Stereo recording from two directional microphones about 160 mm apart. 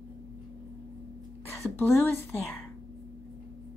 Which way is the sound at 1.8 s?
15° left (ahead or behind).